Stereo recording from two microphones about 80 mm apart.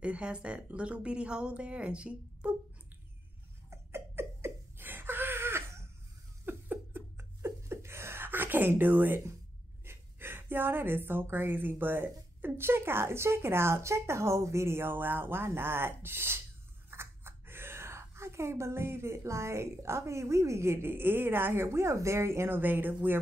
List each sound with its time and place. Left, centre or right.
0.0 s speech: centre
3.7 s laughter: right
9.8 s speech: right